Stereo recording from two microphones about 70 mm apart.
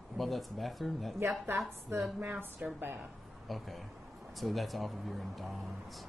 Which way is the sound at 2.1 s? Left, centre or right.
Right.